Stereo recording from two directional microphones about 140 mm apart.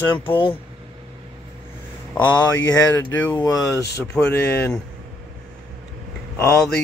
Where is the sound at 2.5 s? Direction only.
25° left (ahead or behind).